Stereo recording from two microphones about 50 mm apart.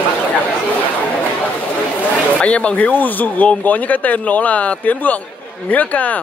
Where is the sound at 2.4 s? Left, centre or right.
Left.